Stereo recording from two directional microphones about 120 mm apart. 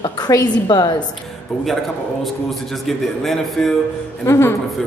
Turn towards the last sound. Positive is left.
turn(degrees=20)  # may be behind; listen again after turning